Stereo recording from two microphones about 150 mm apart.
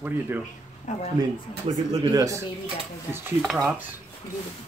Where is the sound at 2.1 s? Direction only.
20° right (ahead or behind).